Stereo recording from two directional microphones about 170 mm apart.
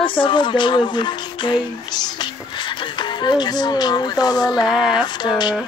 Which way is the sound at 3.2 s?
25° left (ahead or behind).